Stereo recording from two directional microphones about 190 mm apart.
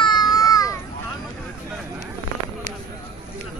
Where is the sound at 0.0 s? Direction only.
20° left (ahead or behind).